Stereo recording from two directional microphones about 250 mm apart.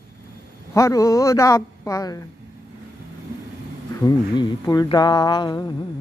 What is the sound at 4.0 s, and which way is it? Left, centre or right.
A woman's voice, centre.